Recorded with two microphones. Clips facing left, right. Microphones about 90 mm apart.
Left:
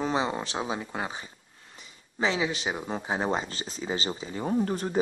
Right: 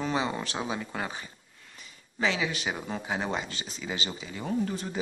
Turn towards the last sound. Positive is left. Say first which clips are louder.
# left 4 dB
turn(degrees=40)  # may be behind; listen again after turning